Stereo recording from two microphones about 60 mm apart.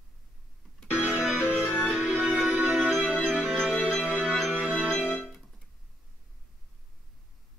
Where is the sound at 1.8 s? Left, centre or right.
Right.